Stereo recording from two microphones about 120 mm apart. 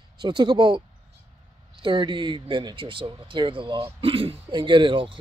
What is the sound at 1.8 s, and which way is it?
A man's voice, 40° right (ahead or behind).